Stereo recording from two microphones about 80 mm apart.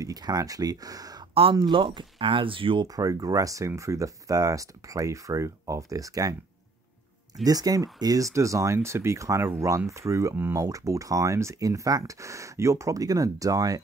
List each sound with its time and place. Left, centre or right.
0.0 s speech: right
1.5 s speech: right
2.9 s speech: right
7.4 s speech: right